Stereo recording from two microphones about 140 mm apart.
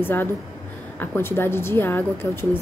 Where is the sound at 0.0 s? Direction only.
15° left (ahead or behind).